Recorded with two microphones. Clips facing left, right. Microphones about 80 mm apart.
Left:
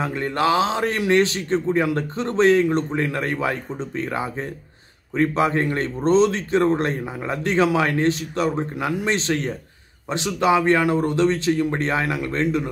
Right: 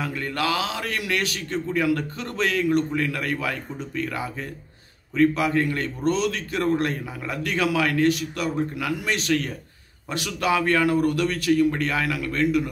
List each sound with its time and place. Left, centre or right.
0.0 s speech: left